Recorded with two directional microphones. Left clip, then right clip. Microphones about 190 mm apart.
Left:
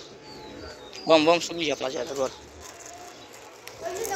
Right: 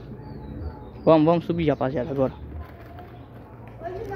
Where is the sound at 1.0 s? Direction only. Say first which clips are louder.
Right 1 dB; 10° right (ahead or behind).